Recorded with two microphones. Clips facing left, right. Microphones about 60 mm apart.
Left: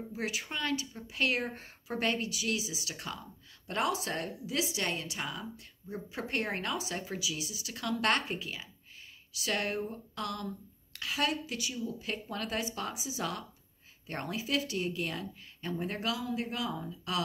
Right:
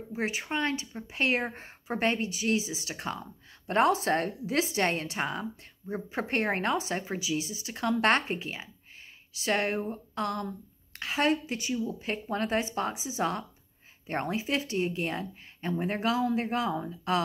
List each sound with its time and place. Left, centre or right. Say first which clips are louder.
0.1 s speech: right 7 dB; right